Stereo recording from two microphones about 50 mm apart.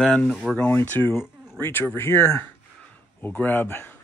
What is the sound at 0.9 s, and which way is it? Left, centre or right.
A man's voice, left.